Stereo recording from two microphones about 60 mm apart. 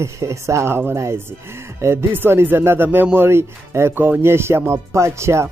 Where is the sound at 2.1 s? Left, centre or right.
Right.